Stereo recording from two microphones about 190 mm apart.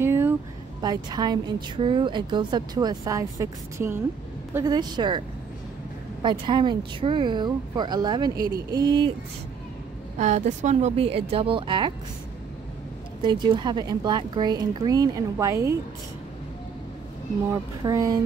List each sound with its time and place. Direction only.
0.0 s a sound: 10° right (ahead or behind)
0.7 s speech: 20° right (ahead or behind)
6.2 s speech: 25° right (ahead or behind)
10.1 s a woman's voice: 40° right (ahead or behind)
13.2 s speech: 25° right (ahead or behind)
17.8 s speech: 20° right (ahead or behind)